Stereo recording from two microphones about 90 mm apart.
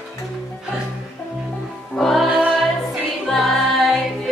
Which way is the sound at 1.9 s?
Centre (ahead or behind).